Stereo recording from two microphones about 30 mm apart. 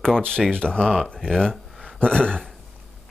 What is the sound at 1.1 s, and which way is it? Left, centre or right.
Speech, centre.